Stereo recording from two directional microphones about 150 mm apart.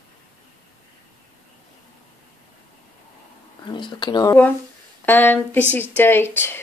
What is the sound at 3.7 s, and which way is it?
Speech, 30° left (ahead or behind).